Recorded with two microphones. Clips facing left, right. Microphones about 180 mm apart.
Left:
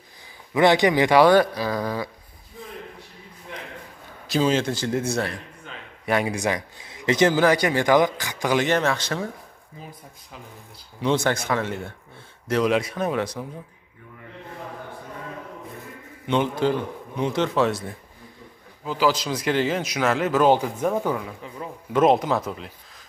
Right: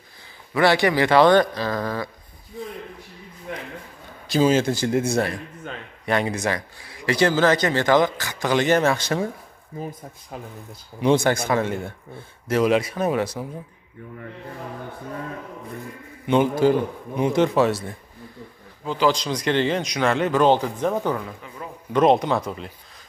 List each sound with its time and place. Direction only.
0.6 s speech: 20° left (ahead or behind)
4.3 s speech: 5° right (ahead or behind)
6.0 s speech: 10° left (ahead or behind)
8.6 s speech: 10° right (ahead or behind)
9.8 s speech: 45° right (ahead or behind)
11.0 s speech: 10° right (ahead or behind)
12.4 s speech: 5° right (ahead or behind)
16.3 s speech: 5° right (ahead or behind)
21.6 s a man's voice: 30° left (ahead or behind)
21.9 s speech: 5° left (ahead or behind)